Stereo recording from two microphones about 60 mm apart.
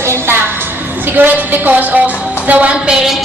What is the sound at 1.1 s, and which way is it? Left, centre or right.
A woman's voice, right.